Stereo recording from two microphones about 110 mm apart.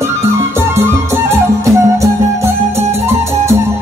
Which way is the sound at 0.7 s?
25° right (ahead or behind).